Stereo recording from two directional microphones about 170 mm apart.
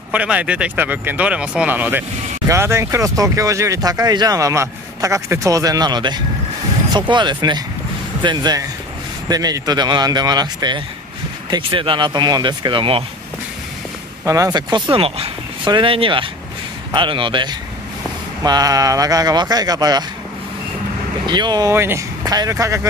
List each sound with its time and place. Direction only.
0.1 s speech: 10° right (ahead or behind); by 13.0 s 30° right (ahead or behind)
14.2 s speech: 20° right (ahead or behind)
21.3 s speech: 25° right (ahead or behind)